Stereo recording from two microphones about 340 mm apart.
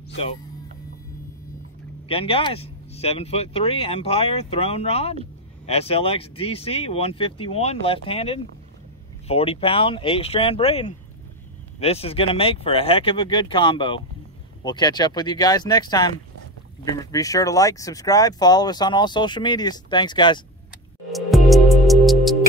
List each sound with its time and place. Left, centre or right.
2.0 s speech: centre
21.1 s music: centre